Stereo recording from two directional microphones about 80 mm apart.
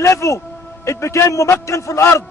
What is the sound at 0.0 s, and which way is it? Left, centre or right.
A man's voice, left.